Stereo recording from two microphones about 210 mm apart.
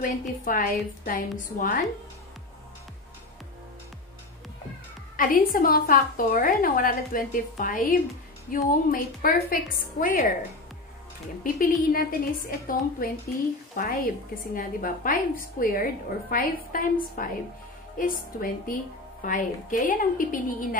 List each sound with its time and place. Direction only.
0.0 s a woman's voice: 40° left (ahead or behind)
5.1 s a woman's voice: 40° left (ahead or behind)
11.4 s a woman's voice: 40° left (ahead or behind)